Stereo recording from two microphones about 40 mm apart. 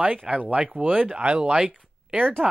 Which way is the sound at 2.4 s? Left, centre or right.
Centre.